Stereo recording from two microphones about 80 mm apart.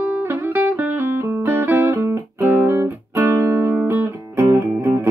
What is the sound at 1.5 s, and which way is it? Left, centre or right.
Music, right.